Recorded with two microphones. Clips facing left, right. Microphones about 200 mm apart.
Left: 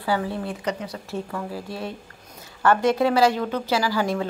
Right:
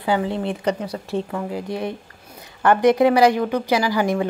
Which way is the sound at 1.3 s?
15° right (ahead or behind).